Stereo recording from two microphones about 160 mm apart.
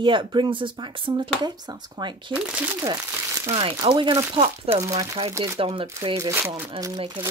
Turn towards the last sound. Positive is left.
turn(degrees=-25)  # may be behind; listen again after turning